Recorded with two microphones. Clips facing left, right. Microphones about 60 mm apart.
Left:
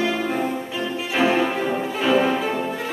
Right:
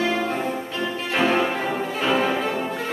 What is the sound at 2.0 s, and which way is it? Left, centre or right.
Music, centre.